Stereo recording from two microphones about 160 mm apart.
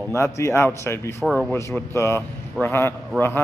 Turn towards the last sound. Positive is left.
turn(degrees=15)  # may be behind; listen again after turning